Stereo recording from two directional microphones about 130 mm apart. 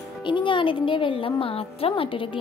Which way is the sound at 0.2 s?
40° left (ahead or behind).